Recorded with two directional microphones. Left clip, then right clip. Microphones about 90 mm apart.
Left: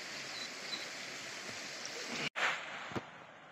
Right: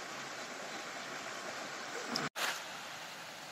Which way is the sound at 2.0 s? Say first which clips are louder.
Right 1 dB; 30° right (ahead or behind).